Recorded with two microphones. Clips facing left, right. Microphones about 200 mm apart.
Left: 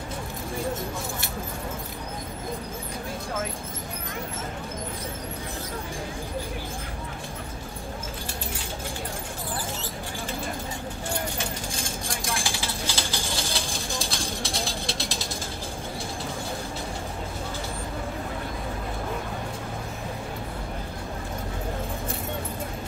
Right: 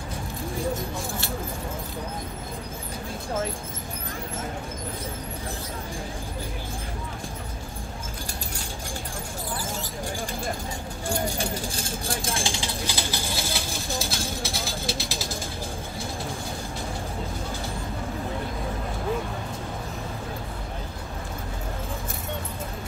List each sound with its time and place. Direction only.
12.1 s vehicle: 25° right (ahead or behind)
12.8 s bird: 10° right (ahead or behind)
13.9 s a sound: 5° right (ahead or behind)